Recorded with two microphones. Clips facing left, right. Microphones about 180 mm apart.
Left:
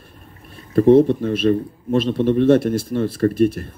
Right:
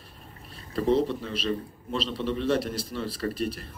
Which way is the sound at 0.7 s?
50° left (ahead or behind).